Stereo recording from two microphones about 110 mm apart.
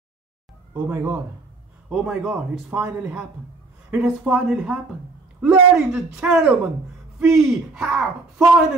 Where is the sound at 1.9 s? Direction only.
Centre (ahead or behind).